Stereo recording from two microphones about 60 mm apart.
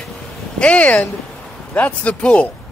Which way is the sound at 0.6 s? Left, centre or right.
Left.